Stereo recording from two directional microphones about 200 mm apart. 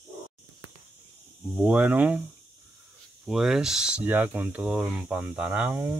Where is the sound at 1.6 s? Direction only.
5° right (ahead or behind).